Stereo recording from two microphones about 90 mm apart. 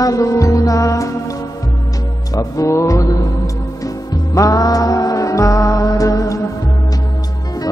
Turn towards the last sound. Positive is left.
turn(degrees=45)  # may be behind; listen again after turning